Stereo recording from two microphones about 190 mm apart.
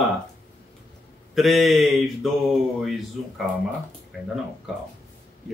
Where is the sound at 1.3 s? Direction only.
Centre (ahead or behind).